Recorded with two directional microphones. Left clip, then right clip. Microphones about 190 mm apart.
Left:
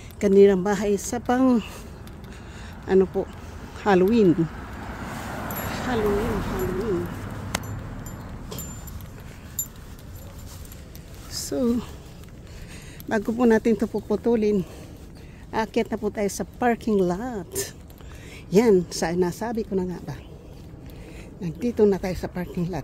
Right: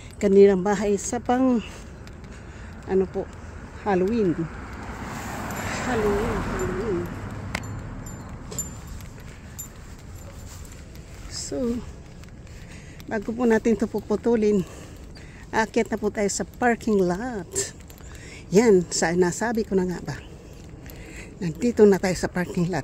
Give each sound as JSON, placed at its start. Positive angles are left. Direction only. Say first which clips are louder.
{"t": 0.2, "sound": "speech", "louder": "even", "side_deg": -5}
{"t": 2.9, "sound": "speech", "louder": "left 4 dB", "side_deg": 20}
{"t": 3.8, "sound": "vehicle", "louder": "left 4 dB", "side_deg": 20}
{"t": 5.9, "sound": "speech", "louder": "even", "side_deg": -45}
{"t": 6.6, "sound": "speech", "louder": "even", "side_deg": 0}
{"t": 7.5, "sound": "a sound", "louder": "left 2 dB", "side_deg": 25}
{"t": 11.3, "sound": "a sound", "louder": "left 3 dB", "side_deg": 15}
{"t": 13.1, "sound": "speech", "louder": "left 3 dB", "side_deg": 20}
{"t": 13.5, "sound": "speech", "louder": "even", "side_deg": 0}
{"t": 21.4, "sound": "speech", "louder": "right 3 dB", "side_deg": -20}